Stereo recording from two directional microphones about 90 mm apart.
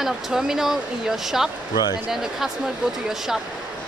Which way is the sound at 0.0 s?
5° right (ahead or behind).